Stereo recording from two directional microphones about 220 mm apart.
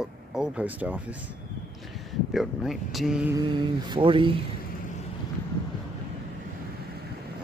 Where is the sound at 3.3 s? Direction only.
20° right (ahead or behind).